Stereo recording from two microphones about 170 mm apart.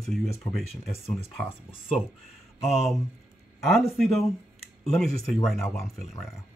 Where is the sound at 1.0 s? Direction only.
35° left (ahead or behind).